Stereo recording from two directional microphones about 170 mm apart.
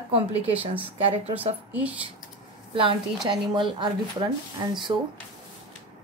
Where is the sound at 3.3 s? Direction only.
30° right (ahead or behind).